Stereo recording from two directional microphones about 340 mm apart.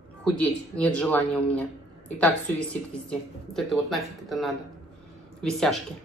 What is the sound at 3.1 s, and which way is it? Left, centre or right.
Speech, centre.